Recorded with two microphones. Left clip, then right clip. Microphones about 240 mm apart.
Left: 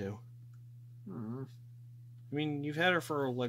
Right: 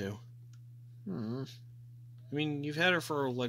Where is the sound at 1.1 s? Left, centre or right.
Right.